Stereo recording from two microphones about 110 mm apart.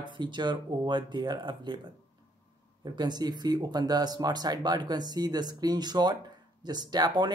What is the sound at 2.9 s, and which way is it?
Speech, 40° right (ahead or behind).